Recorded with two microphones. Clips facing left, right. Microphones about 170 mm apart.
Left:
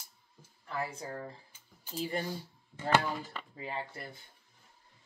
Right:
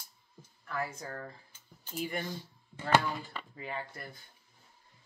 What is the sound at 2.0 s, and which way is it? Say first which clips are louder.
Speech: left 1 dB; 35° left (ahead or behind).